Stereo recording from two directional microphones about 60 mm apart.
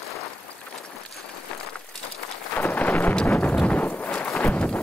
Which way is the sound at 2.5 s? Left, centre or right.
Left.